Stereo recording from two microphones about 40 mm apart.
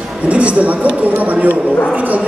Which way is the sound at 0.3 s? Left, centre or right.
Right.